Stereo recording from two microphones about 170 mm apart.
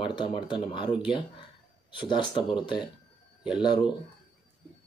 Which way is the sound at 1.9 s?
30° left (ahead or behind).